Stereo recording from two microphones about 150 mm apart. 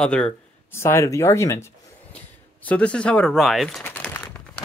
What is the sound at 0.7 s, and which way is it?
Speech, 20° left (ahead or behind).